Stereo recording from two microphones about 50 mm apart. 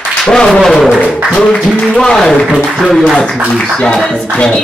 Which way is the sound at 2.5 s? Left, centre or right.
Centre.